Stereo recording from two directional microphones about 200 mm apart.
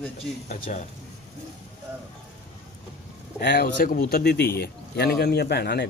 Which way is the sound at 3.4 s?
50° left (ahead or behind).